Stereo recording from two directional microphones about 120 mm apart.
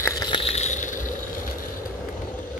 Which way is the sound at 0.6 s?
85° left.